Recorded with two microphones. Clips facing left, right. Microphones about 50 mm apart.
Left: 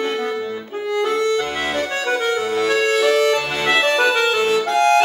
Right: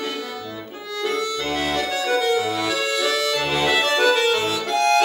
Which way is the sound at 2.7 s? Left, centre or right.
Left.